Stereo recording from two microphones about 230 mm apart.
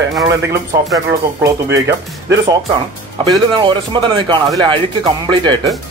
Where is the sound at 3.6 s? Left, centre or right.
Centre.